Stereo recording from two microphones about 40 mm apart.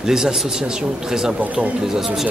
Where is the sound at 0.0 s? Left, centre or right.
Centre.